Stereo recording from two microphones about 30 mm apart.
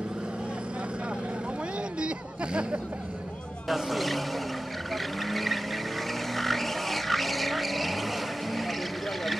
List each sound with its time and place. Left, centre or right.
2.0 s a sound: right
3.6 s speech: centre
4.9 s vehicle: centre